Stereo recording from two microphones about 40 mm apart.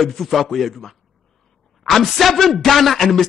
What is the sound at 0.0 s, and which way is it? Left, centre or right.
Speech, centre.